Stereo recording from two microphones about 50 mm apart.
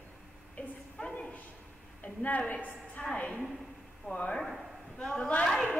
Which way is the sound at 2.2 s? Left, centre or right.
Left.